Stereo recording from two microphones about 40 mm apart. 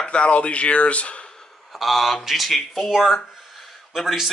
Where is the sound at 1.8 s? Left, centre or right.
Centre.